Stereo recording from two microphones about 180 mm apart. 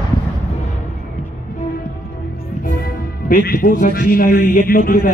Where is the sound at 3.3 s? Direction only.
55° left (ahead or behind).